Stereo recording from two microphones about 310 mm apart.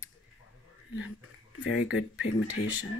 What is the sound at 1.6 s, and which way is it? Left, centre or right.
Speech, left.